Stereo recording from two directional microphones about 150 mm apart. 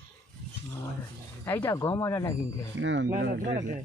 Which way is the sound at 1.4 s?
15° left (ahead or behind).